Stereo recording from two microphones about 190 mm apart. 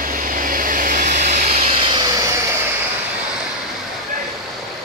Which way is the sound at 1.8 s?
25° right (ahead or behind).